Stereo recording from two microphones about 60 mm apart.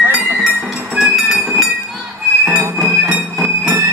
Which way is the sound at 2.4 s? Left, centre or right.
Centre.